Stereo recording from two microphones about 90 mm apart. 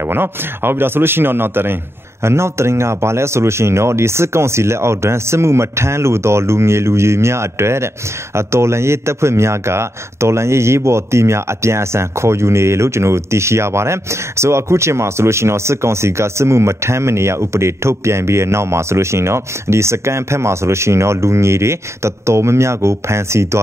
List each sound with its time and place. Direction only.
0.1 s a man's voice: 25° right (ahead or behind)